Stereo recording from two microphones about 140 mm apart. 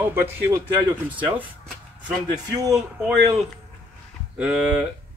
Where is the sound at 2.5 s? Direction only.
25° right (ahead or behind).